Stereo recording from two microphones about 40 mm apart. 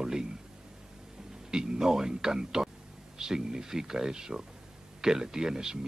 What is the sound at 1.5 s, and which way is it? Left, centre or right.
Speech, centre.